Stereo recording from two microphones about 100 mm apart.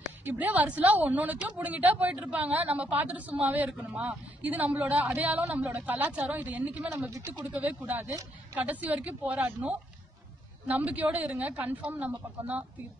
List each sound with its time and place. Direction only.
0.2 s a woman's voice: 15° right (ahead or behind)
7.1 s speech: 30° right (ahead or behind)
7.5 s a woman's voice: 15° right (ahead or behind)